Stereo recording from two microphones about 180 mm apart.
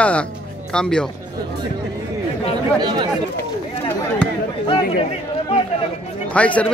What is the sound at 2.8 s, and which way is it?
Speech, 25° right (ahead or behind).